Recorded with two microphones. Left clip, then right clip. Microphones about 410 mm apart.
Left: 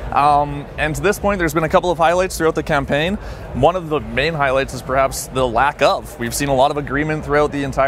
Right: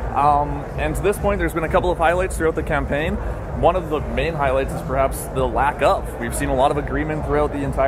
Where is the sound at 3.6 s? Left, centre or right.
Left.